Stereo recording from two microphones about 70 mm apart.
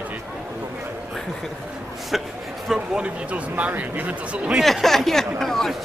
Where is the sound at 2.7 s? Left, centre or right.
Centre.